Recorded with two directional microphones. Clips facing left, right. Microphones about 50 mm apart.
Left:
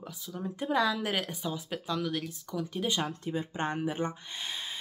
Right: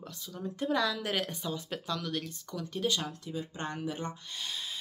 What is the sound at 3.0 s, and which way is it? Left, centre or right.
Speech, left.